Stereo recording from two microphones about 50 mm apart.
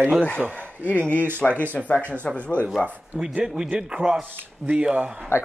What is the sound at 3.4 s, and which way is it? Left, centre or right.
Speech, centre.